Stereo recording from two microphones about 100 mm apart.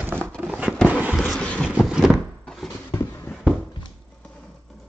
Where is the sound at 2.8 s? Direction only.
20° left (ahead or behind).